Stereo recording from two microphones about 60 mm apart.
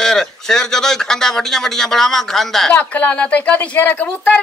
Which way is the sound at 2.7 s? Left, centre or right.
Left.